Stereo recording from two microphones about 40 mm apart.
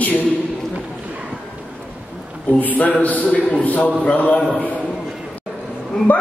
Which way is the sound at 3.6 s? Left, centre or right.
Left.